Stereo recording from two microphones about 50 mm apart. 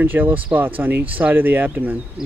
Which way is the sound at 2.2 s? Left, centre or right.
Centre.